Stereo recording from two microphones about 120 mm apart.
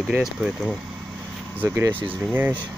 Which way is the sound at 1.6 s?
15° right (ahead or behind).